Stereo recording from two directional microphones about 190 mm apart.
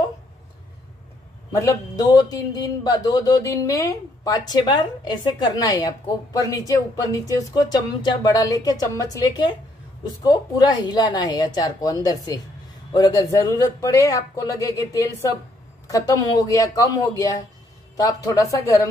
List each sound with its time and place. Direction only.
1.5 s speech: 15° left (ahead or behind)
17.9 s speech: 15° left (ahead or behind)